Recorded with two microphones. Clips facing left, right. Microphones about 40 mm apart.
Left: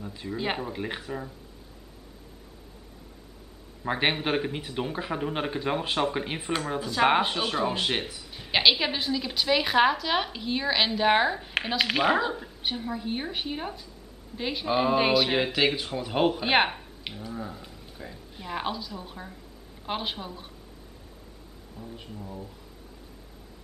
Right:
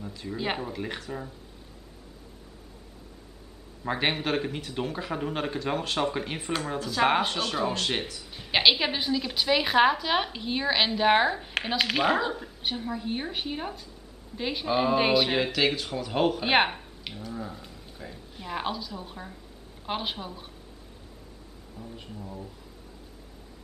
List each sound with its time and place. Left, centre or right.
0.3 s a woman's voice: centre
0.7 s speech: centre
3.8 s speech: centre
8.3 s a woman's voice: centre
16.4 s a woman's voice: centre
21.7 s a woman's voice: centre